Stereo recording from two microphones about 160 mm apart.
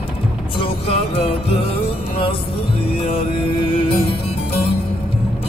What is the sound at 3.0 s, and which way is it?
Music, 30° left (ahead or behind).